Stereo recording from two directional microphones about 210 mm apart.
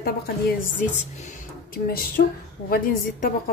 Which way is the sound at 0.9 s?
35° left (ahead or behind).